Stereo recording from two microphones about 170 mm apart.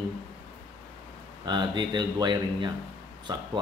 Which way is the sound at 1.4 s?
25° right (ahead or behind).